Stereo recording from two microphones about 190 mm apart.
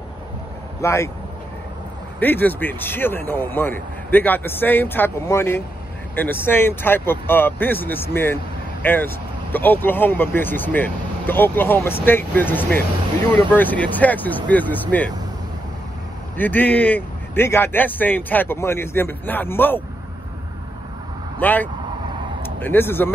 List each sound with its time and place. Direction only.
0.7 s speech: 15° left (ahead or behind)
2.1 s speech: 10° left (ahead or behind)
16.3 s speech: 10° left (ahead or behind)
21.4 s speech: 10° left (ahead or behind)